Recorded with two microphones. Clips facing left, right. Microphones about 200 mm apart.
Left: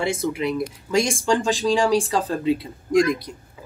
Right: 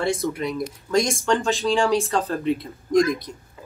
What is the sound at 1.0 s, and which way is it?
Speech, 30° left (ahead or behind).